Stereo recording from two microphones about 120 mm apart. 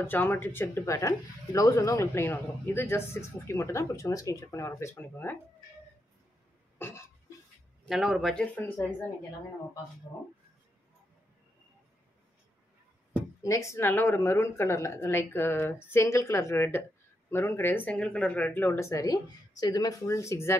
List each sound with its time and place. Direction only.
0.0 s speech: 15° left (ahead or behind)
6.8 s cough: 20° left (ahead or behind)
7.9 s speech: centre (ahead or behind)
8.5 s speech: 15° left (ahead or behind)
13.4 s speech: 25° left (ahead or behind)